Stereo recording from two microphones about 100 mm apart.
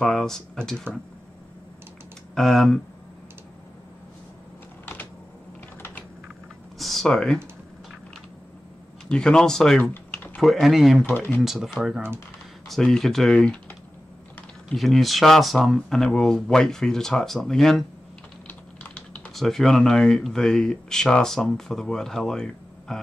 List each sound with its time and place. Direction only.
0.0 s speech: 5° left (ahead or behind)
2.3 s speech: 5° left (ahead or behind)
6.8 s a sound: centre (ahead or behind)
9.1 s speech: 10° left (ahead or behind)
9.8 s typing: 15° left (ahead or behind)
10.4 s speech: centre (ahead or behind)
11.1 s speech: 20° left (ahead or behind)
11.4 s speech: 5° right (ahead or behind)
14.7 s speech: centre (ahead or behind)
18.5 s typing: 10° left (ahead or behind)
19.3 s speech: centre (ahead or behind)